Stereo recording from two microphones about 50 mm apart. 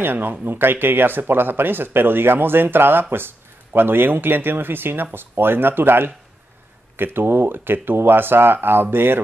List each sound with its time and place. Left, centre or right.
0.0 s speech: right